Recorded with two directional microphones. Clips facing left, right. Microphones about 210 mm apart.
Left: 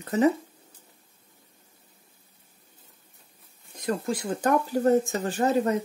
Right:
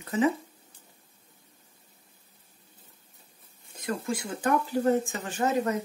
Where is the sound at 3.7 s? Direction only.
35° left (ahead or behind).